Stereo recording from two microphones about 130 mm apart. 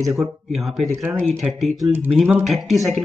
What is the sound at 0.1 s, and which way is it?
Speech, centre (ahead or behind).